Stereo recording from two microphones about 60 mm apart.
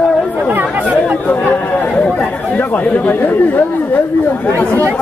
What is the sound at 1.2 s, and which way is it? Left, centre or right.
Chatter, left.